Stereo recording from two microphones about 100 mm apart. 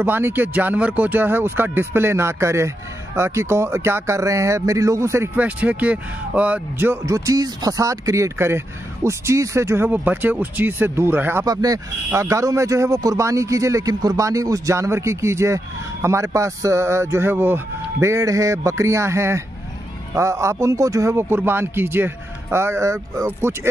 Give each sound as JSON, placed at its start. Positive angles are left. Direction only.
{"t": 0.0, "sound": "speech", "side_deg": -20}
{"t": 5.3, "sound": "a man's voice", "side_deg": -15}
{"t": 7.1, "sound": "speech", "side_deg": -35}
{"t": 9.8, "sound": "speech", "side_deg": -15}
{"t": 11.4, "sound": "speech", "side_deg": -40}